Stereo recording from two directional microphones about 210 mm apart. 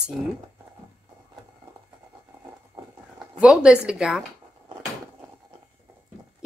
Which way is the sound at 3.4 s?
5° right (ahead or behind).